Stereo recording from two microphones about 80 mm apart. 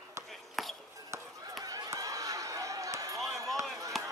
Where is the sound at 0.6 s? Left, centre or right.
Centre.